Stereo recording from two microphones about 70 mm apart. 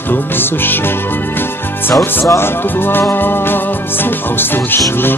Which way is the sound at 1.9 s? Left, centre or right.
Left.